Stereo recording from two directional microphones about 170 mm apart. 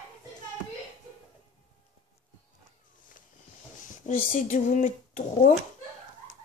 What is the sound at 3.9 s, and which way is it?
Speech, 50° left (ahead or behind).